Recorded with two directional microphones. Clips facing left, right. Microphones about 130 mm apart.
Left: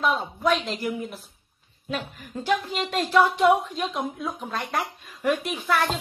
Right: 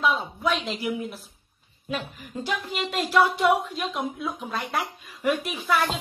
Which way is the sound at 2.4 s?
45° left (ahead or behind).